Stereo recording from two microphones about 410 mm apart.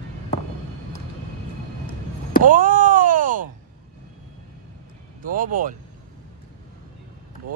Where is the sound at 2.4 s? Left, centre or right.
Centre.